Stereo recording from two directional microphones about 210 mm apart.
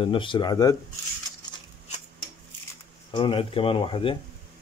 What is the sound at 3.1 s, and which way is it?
Speech, 25° left (ahead or behind).